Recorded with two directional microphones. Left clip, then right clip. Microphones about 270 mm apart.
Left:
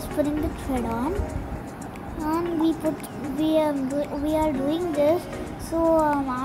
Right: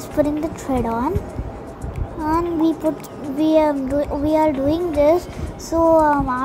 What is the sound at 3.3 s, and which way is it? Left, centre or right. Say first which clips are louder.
A woman's voice: right 6 dB; centre.